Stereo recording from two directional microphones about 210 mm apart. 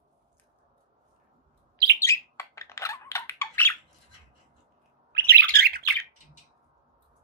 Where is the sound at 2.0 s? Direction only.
15° left (ahead or behind).